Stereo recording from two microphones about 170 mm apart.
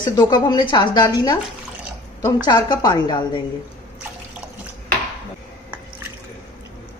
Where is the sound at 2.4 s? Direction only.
20° left (ahead or behind).